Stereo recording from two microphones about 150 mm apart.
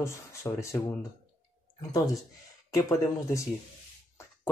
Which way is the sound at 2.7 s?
20° left (ahead or behind).